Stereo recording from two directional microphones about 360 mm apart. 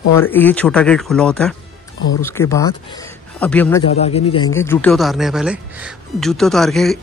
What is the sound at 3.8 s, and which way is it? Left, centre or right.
Speech, centre.